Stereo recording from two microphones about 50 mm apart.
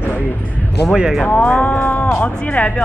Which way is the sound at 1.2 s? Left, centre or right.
Left.